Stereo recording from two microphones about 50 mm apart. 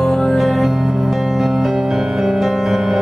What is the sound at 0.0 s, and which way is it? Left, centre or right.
Music, centre.